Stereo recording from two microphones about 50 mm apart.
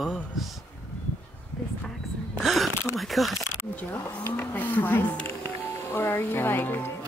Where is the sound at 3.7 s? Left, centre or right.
Left.